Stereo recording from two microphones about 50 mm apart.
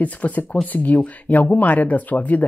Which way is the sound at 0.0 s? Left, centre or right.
Left.